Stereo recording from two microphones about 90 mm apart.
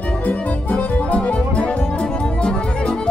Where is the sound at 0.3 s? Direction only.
15° left (ahead or behind).